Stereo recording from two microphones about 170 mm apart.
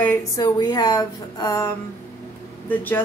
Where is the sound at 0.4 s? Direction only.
25° left (ahead or behind).